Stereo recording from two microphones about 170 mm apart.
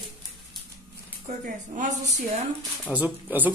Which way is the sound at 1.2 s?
45° right (ahead or behind).